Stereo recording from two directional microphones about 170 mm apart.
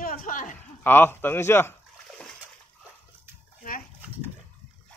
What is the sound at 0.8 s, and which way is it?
Speech, 10° left (ahead or behind).